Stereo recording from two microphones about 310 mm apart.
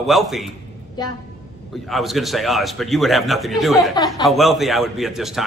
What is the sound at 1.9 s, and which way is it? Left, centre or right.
A man's voice, centre.